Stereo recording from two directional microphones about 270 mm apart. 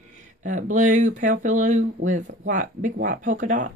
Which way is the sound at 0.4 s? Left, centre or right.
Right.